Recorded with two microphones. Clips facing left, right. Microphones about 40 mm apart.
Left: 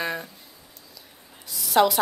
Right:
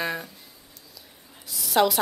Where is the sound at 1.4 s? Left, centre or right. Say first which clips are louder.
Left 2 dB; centre.